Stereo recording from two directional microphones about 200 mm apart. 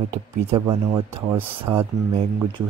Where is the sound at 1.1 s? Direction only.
10° right (ahead or behind).